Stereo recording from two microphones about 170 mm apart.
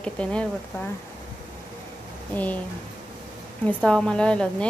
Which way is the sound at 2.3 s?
10° left (ahead or behind).